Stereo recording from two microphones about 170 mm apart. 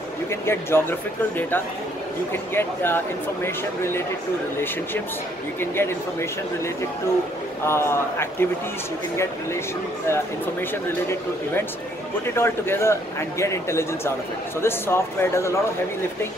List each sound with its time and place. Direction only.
0.3 s speech: 15° left (ahead or behind)
5.6 s speech: 15° left (ahead or behind)
7.6 s speech: 15° left (ahead or behind)